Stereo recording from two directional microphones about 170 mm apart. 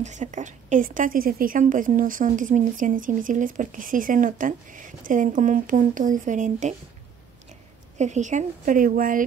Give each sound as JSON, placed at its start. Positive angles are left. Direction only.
{"t": 0.0, "sound": "a woman's voice", "side_deg": -45}
{"t": 8.0, "sound": "a woman's voice", "side_deg": -45}